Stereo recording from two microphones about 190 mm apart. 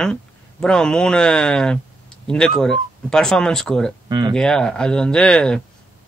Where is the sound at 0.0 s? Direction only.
5° left (ahead or behind).